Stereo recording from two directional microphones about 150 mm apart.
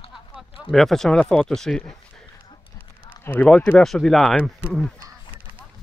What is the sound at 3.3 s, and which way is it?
Speech, 10° left (ahead or behind).